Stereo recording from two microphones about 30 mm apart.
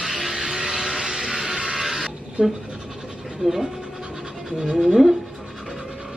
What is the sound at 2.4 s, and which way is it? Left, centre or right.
Speech, right.